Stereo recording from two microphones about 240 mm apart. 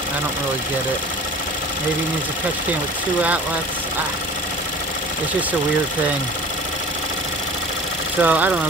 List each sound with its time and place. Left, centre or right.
8.2 s speech: centre